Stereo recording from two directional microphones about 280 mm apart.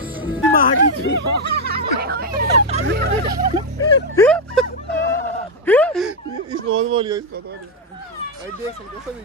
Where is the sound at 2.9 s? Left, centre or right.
Right.